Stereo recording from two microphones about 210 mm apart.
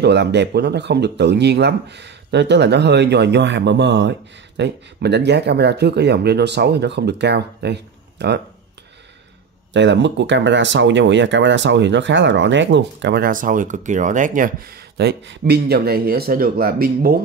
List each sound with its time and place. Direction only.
0.0 s speech: 55° right (ahead or behind)
9.7 s speech: 60° right (ahead or behind)